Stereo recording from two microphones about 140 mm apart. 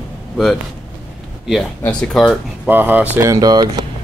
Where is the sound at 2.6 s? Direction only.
15° right (ahead or behind).